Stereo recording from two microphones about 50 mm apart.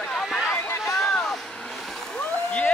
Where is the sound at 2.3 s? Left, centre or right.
Left.